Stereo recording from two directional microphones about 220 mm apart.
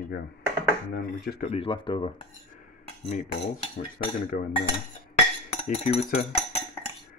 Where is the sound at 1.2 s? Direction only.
45° left (ahead or behind).